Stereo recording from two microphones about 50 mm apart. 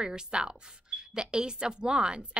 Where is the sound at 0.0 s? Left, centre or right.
Centre.